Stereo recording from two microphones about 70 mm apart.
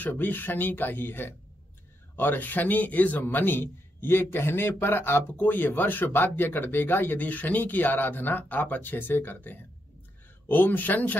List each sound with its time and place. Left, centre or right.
0.0 s a man's voice: left